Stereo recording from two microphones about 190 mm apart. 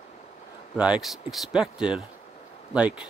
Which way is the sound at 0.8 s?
5° right (ahead or behind).